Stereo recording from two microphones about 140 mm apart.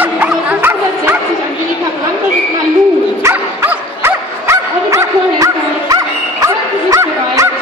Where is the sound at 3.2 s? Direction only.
15° right (ahead or behind).